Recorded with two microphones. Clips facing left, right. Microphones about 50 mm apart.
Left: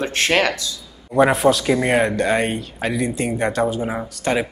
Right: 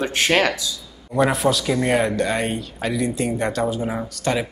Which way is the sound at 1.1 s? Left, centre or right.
Centre.